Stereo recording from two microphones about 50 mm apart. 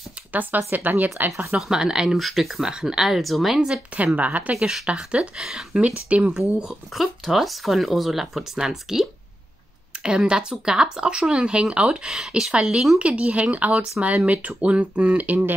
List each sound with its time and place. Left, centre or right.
0.3 s speech: right
1.6 s speech: centre
2.1 s speech: centre
2.6 s speech: centre
3.5 s speech: centre
3.9 s speech: right
4.6 s speech: centre
4.8 s speech: right
5.5 s speech: centre
5.8 s speech: right
6.6 s speech: centre
10.0 s speech: centre
13.0 s speech: right